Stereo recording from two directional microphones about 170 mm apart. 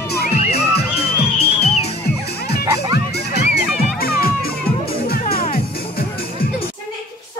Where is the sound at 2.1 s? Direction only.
70° left (ahead or behind).